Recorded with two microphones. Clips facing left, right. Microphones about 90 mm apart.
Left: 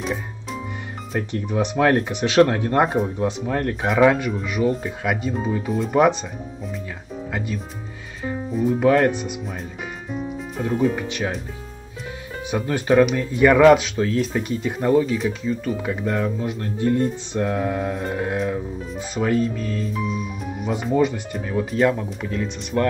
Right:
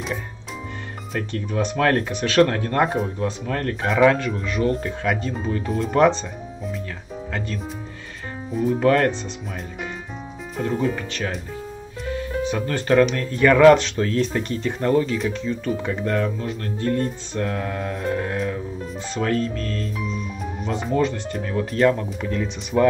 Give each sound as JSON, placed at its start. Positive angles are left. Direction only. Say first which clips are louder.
{"t": 1.3, "sound": "speech", "louder": "left 1 dB", "side_deg": 15}
{"t": 7.3, "sound": "speech", "louder": "even", "side_deg": 10}
{"t": 10.6, "sound": "speech", "louder": "left 2 dB", "side_deg": 5}